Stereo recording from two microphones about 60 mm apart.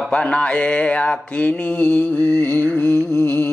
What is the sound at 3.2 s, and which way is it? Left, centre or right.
Humming, left.